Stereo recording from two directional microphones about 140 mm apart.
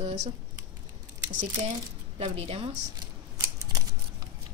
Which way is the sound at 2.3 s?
45° right (ahead or behind).